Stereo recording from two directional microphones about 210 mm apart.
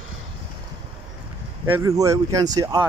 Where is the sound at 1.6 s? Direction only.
15° right (ahead or behind).